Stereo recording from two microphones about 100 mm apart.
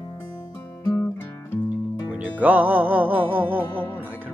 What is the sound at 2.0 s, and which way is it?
Speech, 15° right (ahead or behind).